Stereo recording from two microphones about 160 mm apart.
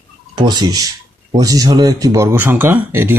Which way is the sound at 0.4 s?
25° right (ahead or behind).